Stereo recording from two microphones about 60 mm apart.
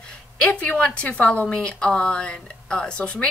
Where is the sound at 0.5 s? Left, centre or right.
Left.